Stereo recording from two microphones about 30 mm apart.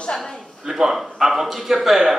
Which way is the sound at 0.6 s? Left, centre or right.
Centre.